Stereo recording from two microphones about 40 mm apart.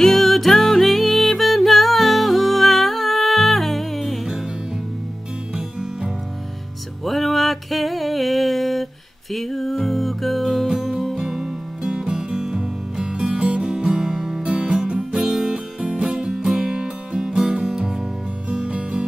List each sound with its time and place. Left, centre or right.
0.0 s music: centre
5.5 s music: centre
7.1 s a sound: centre
9.3 s music: centre
14.4 s music: right
18.5 s music: right